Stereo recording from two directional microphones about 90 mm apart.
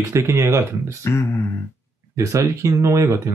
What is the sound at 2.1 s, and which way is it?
Speech, 35° right (ahead or behind).